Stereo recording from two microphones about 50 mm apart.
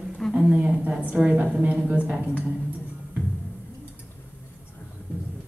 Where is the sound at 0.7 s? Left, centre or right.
Right.